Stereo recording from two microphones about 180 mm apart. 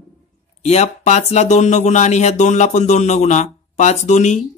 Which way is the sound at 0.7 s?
40° left (ahead or behind).